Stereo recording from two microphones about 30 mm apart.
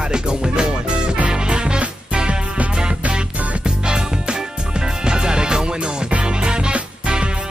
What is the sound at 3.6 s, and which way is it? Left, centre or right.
Music, right.